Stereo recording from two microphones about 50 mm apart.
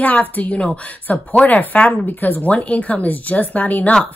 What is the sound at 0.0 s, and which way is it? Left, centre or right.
A woman's voice, left.